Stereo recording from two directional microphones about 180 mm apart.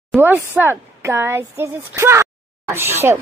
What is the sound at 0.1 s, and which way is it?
Speech, 10° right (ahead or behind).